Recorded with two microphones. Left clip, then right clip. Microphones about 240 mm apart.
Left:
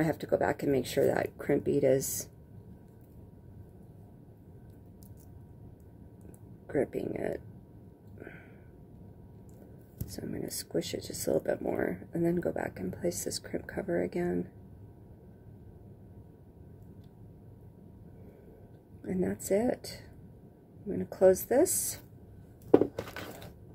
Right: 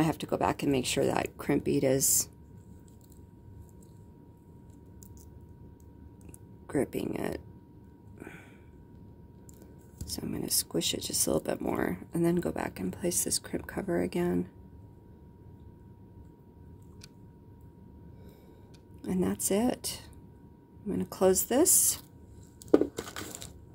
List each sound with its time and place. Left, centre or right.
0.0 s speech: right
6.7 s speech: right
10.0 s speech: right
18.9 s speech: right